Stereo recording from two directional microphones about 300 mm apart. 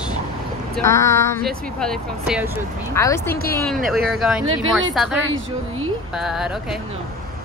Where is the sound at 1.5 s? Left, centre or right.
Centre.